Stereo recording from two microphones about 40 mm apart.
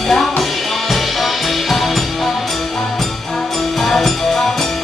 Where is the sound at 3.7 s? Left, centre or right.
Centre.